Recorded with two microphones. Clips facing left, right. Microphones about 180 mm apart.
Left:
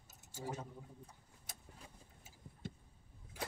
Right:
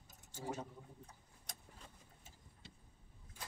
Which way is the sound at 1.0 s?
5° left (ahead or behind).